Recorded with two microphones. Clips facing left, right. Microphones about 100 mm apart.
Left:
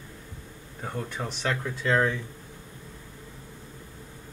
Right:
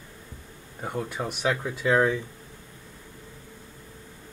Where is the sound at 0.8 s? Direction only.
10° right (ahead or behind).